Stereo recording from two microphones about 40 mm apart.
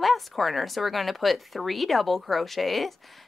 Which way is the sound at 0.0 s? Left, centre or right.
Centre.